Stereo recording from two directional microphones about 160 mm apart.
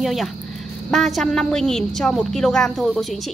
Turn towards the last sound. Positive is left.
turn(degrees=0)  # may be behind; listen again after turning